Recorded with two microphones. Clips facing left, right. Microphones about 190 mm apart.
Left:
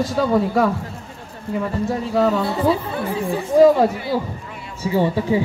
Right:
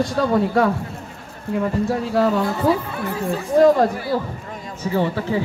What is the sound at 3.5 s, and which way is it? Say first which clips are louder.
Speech: left 1 dB; 5° left (ahead or behind).